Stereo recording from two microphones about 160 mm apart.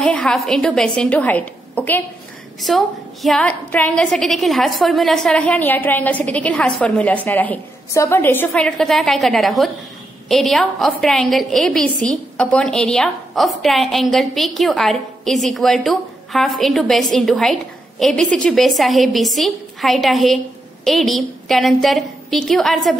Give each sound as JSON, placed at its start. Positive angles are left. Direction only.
{"t": 0.0, "sound": "a woman's voice", "side_deg": 5}
{"t": 2.6, "sound": "a woman's voice", "side_deg": 0}